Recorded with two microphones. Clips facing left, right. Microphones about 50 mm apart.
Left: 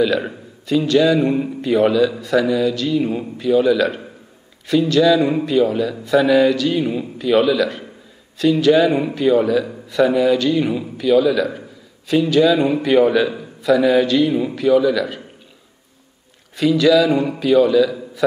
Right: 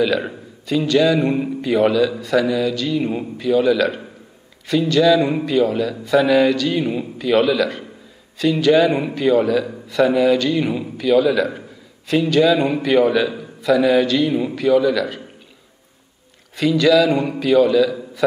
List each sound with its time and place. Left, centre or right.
0.0 s a man's voice: centre
6.8 s speech: centre
7.2 s a man's voice: centre
16.5 s a man's voice: centre